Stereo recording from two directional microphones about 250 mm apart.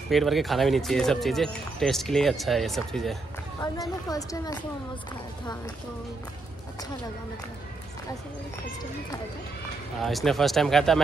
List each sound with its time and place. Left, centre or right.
0.1 s speech: centre
3.6 s a woman's voice: centre
10.0 s speech: centre